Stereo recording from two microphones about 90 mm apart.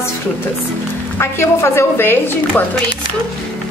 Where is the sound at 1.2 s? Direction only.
30° left (ahead or behind).